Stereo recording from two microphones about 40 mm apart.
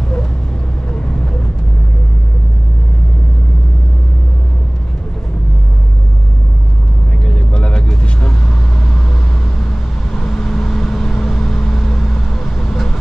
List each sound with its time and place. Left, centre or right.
7.2 s vehicle: left
10.2 s vehicle: centre